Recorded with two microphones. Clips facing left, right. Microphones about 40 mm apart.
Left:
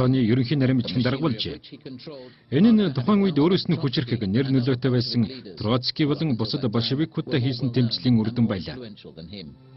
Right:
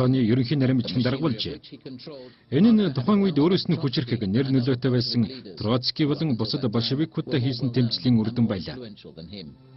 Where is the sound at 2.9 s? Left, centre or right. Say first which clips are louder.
Left 1 dB; centre.